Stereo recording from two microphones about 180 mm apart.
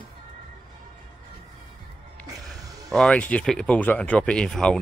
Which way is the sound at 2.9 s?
5° left (ahead or behind).